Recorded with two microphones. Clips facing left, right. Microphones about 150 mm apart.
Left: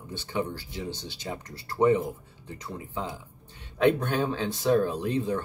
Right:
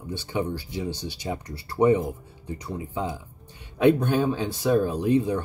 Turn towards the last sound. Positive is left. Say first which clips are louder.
# right 5 dB
turn(degrees=-15)  # may be behind; listen again after turning